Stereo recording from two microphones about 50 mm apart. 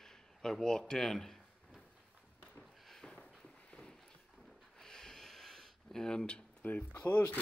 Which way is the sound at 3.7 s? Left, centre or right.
Centre.